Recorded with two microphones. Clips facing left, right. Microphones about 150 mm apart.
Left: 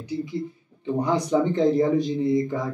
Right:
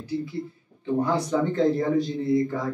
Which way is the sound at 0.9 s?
15° left (ahead or behind).